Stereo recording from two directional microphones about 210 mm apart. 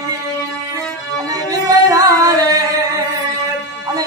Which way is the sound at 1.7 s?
15° right (ahead or behind).